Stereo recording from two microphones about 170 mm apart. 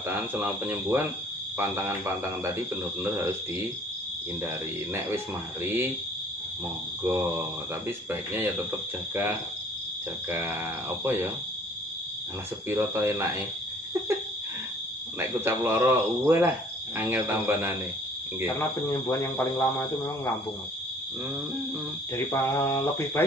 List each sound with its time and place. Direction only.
0.1 s speech: 10° right (ahead or behind)
4.9 s speech: 15° right (ahead or behind)
7.0 s speech: 15° right (ahead or behind)
10.3 s speech: 15° right (ahead or behind)
12.6 s speech: 15° right (ahead or behind)
15.1 s speech: 15° right (ahead or behind)
18.6 s speech: 20° left (ahead or behind)
22.1 s speech: 15° left (ahead or behind)